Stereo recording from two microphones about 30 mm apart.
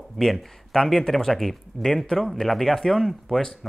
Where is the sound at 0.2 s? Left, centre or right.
Centre.